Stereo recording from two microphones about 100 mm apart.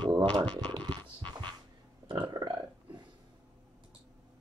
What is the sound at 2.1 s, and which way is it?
Burping, 45° right (ahead or behind).